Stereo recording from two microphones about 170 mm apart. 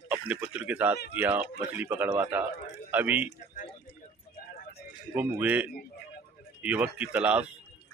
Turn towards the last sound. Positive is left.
turn(degrees=-10)  # may be behind; listen again after turning